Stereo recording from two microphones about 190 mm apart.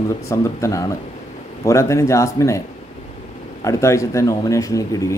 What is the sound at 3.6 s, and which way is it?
Speech, 15° left (ahead or behind).